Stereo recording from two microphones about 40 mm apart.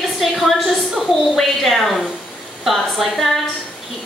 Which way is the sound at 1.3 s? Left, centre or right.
Centre.